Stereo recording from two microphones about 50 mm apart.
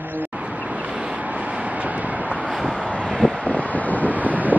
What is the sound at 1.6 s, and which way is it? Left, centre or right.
Vehicle, right.